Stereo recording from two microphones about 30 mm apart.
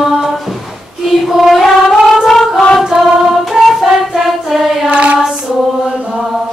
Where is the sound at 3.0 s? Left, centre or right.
Centre.